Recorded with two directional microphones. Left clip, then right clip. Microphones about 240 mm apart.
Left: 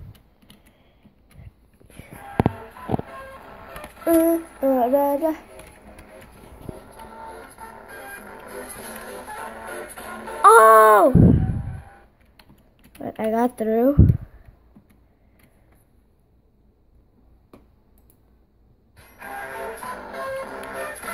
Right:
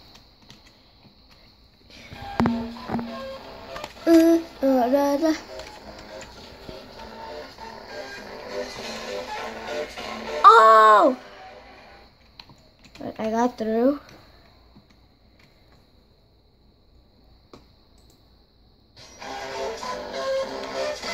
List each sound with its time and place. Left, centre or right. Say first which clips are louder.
2.5 s music: left 1 dB; centre
4.0 s a sound: right 2 dB; centre
5.0 s child singing: left 1 dB; centre
6.7 s music: left 1 dB; centre
13.0 s speech: left 2 dB; centre
19.1 s music: even; centre
19.8 s music: right 2 dB; centre